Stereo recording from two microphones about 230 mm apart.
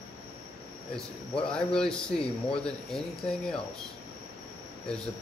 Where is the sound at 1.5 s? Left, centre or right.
Centre.